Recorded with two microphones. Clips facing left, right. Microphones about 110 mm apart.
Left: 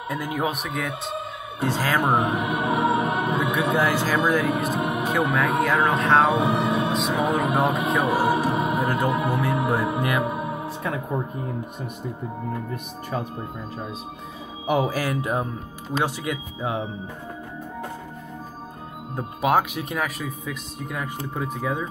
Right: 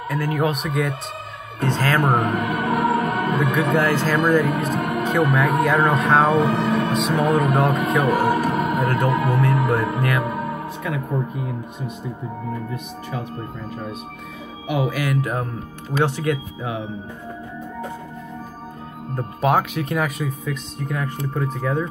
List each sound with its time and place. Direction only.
0.1 s speech: 15° left (ahead or behind)
0.6 s speech: centre (ahead or behind)
5.6 s speech: centre (ahead or behind)
6.2 s speech: 15° left (ahead or behind)
6.9 s speech: centre (ahead or behind)
7.2 s speech: 15° left (ahead or behind)
8.0 s speech: 20° left (ahead or behind)
12.7 s speech: 40° left (ahead or behind)
14.7 s speech: 40° left (ahead or behind)
16.0 s speech: 10° left (ahead or behind)
19.4 s speech: 5° left (ahead or behind)